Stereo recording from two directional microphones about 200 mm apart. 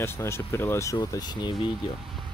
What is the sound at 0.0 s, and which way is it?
Speech, 10° left (ahead or behind).